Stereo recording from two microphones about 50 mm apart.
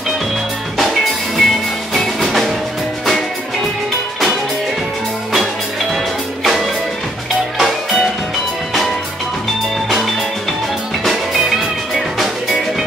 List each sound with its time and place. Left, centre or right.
0.7 s music: centre
6.4 s music: centre
11.1 s music: centre